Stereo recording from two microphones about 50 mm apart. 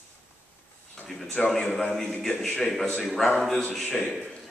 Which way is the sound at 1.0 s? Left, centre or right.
Centre.